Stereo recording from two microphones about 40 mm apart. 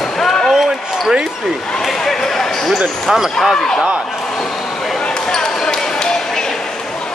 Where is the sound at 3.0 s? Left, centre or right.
Centre.